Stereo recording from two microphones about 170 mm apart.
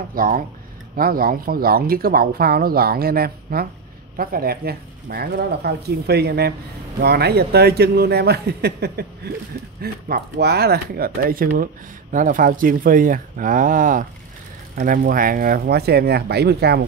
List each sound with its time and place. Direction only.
0.1 s a man's voice: 55° right (ahead or behind); by 16.8 s 75° right (ahead or behind)